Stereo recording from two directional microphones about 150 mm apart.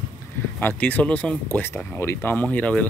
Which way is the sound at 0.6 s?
10° left (ahead or behind).